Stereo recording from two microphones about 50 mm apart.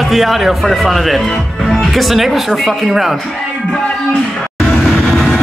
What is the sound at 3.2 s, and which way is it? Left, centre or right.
Music, centre.